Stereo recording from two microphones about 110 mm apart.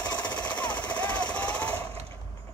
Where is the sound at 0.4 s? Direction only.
15° left (ahead or behind).